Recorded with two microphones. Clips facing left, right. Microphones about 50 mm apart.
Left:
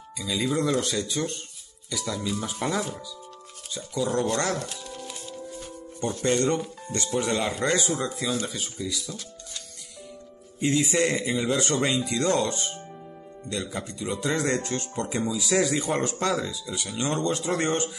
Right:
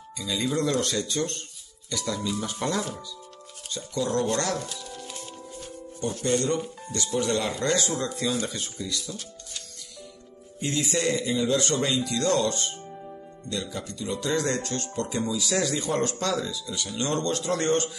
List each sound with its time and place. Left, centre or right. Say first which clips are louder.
0.3 s speech: left 1 dB; centre
4.0 s speech: left 1 dB; left
5.9 s speech: left 1 dB; left
8.5 s speech: left 1 dB; centre
10.6 s speech: left 3 dB; left